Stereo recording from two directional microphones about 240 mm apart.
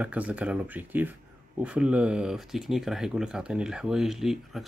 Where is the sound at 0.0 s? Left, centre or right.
Centre.